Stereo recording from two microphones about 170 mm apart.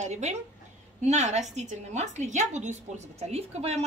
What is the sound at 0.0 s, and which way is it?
A woman's voice, 40° right (ahead or behind).